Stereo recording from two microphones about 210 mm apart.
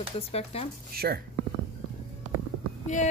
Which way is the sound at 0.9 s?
50° right (ahead or behind).